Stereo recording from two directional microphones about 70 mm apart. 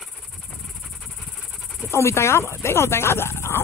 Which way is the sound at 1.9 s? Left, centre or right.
Left.